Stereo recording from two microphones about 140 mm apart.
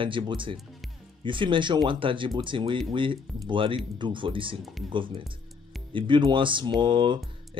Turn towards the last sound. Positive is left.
turn(degrees=-35)  # may be behind; listen again after turning